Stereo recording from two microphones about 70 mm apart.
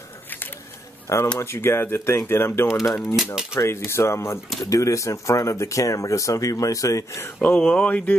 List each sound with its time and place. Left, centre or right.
1.0 s speech: left
4.6 s speech: left
7.3 s speech: centre